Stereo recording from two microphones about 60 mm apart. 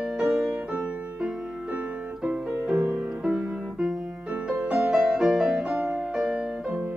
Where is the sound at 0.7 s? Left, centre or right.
Right.